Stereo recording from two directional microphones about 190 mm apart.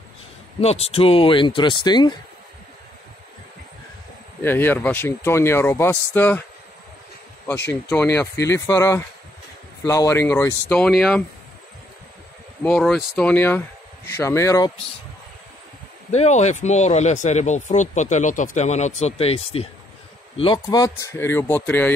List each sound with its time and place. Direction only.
0.6 s speech: 35° left (ahead or behind)
4.4 s speech: 10° left (ahead or behind)
8.2 s speech: 15° left (ahead or behind)
12.6 s speech: 5° left (ahead or behind)
16.1 s speech: 35° left (ahead or behind); by 21.9 s 10° left (ahead or behind)